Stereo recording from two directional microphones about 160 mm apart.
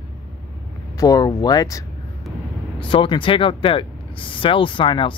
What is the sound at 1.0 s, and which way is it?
Speech, 25° left (ahead or behind).